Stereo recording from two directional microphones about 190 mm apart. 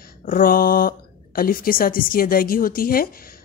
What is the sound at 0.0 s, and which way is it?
A woman's voice, 45° left (ahead or behind).